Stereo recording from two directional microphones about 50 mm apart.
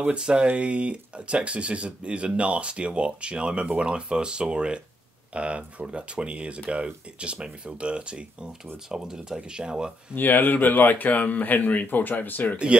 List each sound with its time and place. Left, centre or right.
0.0 s speech: right
10.1 s speech: left